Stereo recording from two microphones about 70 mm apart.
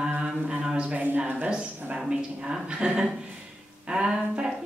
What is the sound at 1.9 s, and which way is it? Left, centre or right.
Speech, centre.